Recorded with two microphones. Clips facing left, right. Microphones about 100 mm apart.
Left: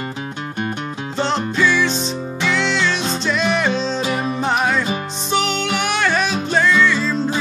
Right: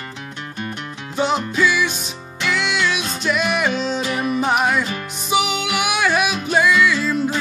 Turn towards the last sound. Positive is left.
turn(degrees=-10)  # may be behind; listen again after turning